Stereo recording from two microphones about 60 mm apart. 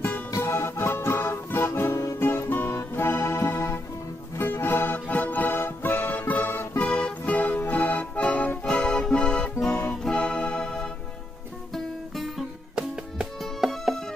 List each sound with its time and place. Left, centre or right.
0.4 s music: left
2.1 s guitar: left
2.9 s music: left
6.8 s music: centre
9.0 s accordion: centre
10.0 s music: centre
11.7 s music: centre